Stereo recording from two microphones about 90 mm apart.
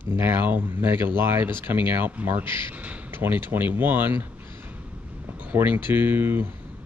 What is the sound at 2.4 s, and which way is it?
Speech, 65° left (ahead or behind).